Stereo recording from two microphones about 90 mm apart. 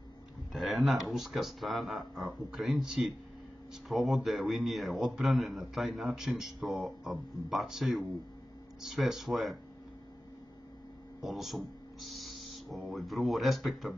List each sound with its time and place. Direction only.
0.5 s a man's voice: centre (ahead or behind)
11.1 s speech: centre (ahead or behind)